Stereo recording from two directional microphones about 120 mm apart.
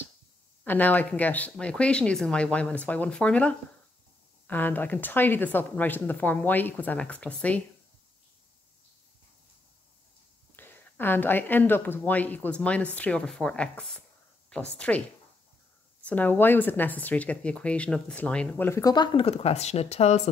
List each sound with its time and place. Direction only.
0.7 s speech: 15° left (ahead or behind)
10.5 s speech: 15° left (ahead or behind)
18.7 s speech: 25° left (ahead or behind)
18.9 s speech: 50° left (ahead or behind)